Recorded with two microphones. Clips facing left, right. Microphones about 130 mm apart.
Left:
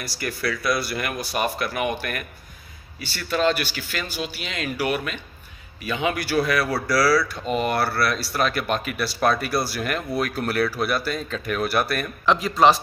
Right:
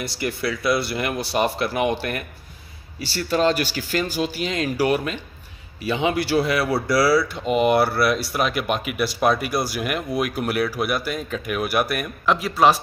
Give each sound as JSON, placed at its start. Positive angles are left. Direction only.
{"t": 0.0, "sound": "speech", "side_deg": -25}